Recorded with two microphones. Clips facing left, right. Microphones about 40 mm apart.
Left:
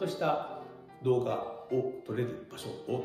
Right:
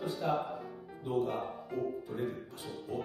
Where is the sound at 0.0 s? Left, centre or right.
Left.